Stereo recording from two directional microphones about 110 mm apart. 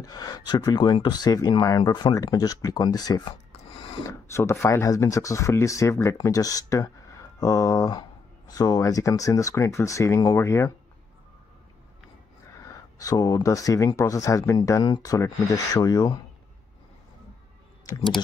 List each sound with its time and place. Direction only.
0.0 s speech: 35° left (ahead or behind)
4.1 s speech: 25° left (ahead or behind)
13.0 s speech: 30° left (ahead or behind)